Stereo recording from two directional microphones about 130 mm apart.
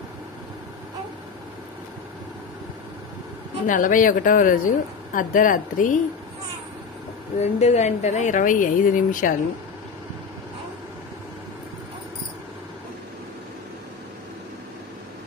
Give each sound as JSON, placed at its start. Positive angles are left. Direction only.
{"t": 3.6, "sound": "a woman's voice", "side_deg": 90}
{"t": 7.3, "sound": "speech", "side_deg": 60}